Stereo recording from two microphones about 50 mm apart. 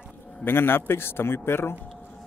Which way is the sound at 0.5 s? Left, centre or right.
Left.